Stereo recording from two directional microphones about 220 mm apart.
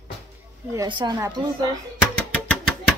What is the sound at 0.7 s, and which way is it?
Speech, 20° right (ahead or behind).